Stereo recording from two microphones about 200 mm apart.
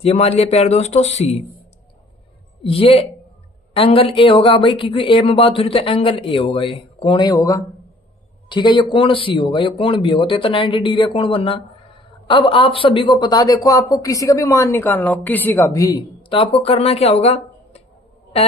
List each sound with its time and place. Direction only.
0.0 s speech: 30° left (ahead or behind)
2.6 s a woman's voice: 30° left (ahead or behind)